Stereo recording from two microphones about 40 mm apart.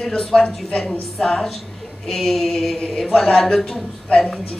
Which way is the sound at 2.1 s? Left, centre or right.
Centre.